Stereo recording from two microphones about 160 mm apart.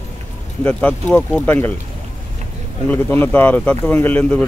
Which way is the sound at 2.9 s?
10° left (ahead or behind).